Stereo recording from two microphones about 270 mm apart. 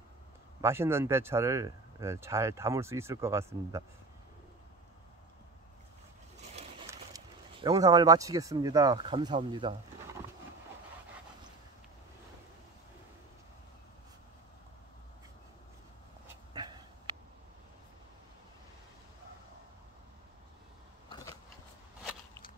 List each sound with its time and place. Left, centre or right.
0.6 s speech: centre
7.6 s speech: centre
16.5 s dog: centre
21.1 s biting: centre